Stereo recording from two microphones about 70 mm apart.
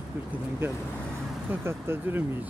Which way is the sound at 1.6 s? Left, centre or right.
Right.